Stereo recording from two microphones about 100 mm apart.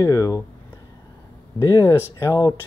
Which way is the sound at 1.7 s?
30° left (ahead or behind).